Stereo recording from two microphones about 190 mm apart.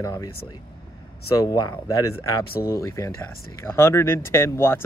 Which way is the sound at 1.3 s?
20° left (ahead or behind).